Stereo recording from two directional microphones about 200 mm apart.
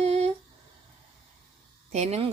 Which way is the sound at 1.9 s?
30° right (ahead or behind).